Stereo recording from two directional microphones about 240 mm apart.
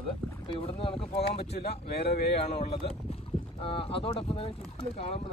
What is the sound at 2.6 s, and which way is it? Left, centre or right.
Speech, left.